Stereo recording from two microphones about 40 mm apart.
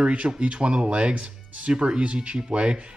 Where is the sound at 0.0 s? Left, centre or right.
Right.